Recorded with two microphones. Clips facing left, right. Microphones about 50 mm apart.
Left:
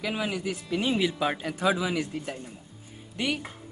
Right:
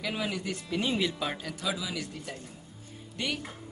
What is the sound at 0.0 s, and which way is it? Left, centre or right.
Speech, centre.